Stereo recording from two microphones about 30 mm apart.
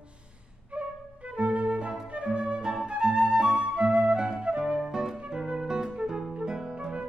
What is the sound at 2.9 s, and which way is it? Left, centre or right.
Flute, right.